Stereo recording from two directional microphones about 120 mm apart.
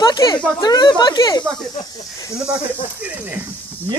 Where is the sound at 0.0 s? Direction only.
35° left (ahead or behind).